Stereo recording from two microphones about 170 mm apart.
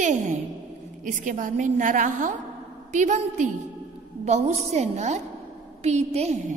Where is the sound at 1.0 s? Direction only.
50° right (ahead or behind).